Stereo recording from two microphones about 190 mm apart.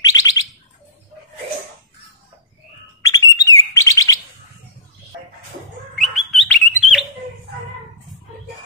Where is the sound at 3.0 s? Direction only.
20° left (ahead or behind).